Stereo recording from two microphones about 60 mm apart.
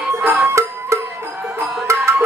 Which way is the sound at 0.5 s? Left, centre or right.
Right.